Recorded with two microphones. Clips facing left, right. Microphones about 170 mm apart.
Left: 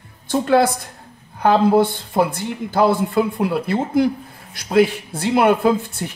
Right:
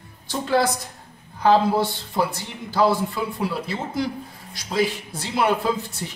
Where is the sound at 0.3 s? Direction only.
60° left (ahead or behind).